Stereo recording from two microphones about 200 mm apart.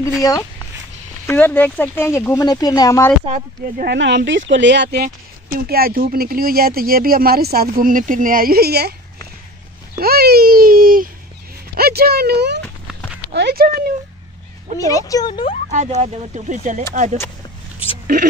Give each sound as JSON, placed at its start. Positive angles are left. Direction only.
{"t": 0.2, "sound": "speech", "side_deg": 20}
{"t": 3.3, "sound": "speech", "side_deg": -40}
{"t": 9.9, "sound": "speech", "side_deg": -50}
{"t": 12.6, "sound": "a sound", "side_deg": 5}
{"t": 13.3, "sound": "speech", "side_deg": -55}
{"t": 14.8, "sound": "speech", "side_deg": 15}
{"t": 15.7, "sound": "speech", "side_deg": -35}